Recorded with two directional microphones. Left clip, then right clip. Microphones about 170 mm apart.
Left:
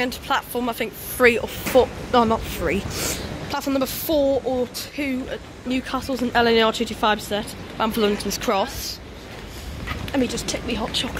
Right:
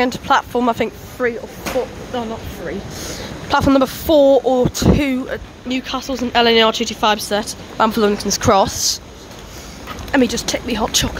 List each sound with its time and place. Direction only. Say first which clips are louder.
0.0 s speech: right 8 dB; 20° right (ahead or behind)
1.2 s speech: left 4 dB; 5° left (ahead or behind)
1.8 s speech: left 6 dB; 25° left (ahead or behind)
3.4 s speech: right 10 dB; 25° right (ahead or behind)
5.3 s speech: right 4 dB; 5° right (ahead or behind); by 8.7 s 25° right (ahead or behind)
10.1 s speech: right 8 dB; 40° right (ahead or behind)